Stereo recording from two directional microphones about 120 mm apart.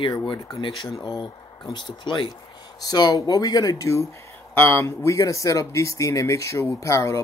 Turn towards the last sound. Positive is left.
turn(degrees=25)  # may be behind; listen again after turning